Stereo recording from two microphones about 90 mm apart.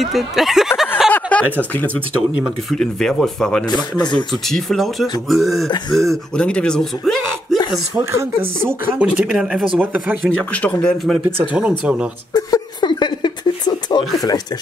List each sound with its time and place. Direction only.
0.0 s speech: 5° right (ahead or behind)
1.1 s chuckle: 15° left (ahead or behind)
2.7 s speech: 5° left (ahead or behind)
3.6 s speech: 50° left (ahead or behind)
4.3 s speech: 5° left (ahead or behind)
8.0 s speech: 30° right (ahead or behind)
8.9 s speech: 15° right (ahead or behind)
9.3 s speech: centre (ahead or behind)
9.8 s speech: 20° right (ahead or behind)
10.2 s speech: 15° left (ahead or behind)
11.8 s speech: 10° right (ahead or behind)
12.4 s a sound: 45° left (ahead or behind)